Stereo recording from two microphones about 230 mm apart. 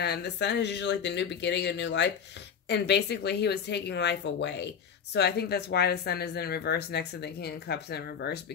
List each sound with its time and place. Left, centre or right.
0.0 s speech: left